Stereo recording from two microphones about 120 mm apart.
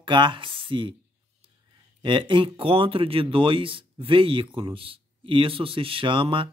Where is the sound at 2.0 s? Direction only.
45° right (ahead or behind).